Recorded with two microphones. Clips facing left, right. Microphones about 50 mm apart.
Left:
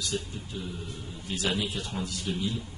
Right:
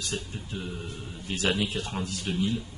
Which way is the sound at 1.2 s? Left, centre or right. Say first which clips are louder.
Right 2 dB; right.